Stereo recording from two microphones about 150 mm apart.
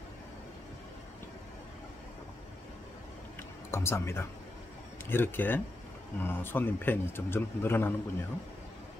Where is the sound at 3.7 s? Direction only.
15° left (ahead or behind).